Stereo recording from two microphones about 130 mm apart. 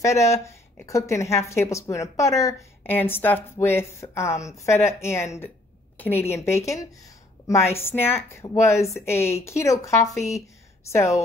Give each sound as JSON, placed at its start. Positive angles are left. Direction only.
{"t": 0.0, "sound": "speech", "side_deg": 20}